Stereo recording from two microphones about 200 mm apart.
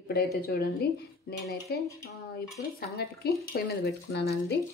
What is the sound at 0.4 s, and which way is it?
A woman's voice, 50° left (ahead or behind).